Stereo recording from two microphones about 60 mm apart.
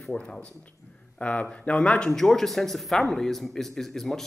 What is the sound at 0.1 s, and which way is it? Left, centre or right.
Speech, centre.